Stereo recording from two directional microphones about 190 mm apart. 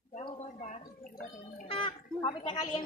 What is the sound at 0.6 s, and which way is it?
Speech, 40° left (ahead or behind).